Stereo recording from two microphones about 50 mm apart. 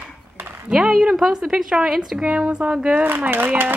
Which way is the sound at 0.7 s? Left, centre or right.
Centre.